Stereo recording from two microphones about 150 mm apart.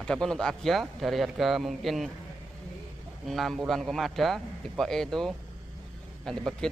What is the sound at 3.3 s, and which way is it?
A man's voice, centre (ahead or behind).